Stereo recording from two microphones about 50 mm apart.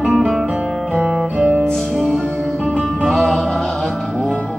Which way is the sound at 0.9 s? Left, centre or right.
Centre.